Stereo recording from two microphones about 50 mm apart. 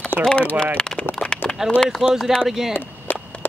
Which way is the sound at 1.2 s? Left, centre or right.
Centre.